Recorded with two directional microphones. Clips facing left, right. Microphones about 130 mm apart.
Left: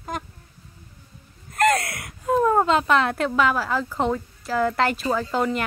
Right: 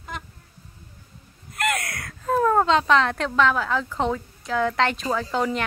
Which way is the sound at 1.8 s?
25° left (ahead or behind).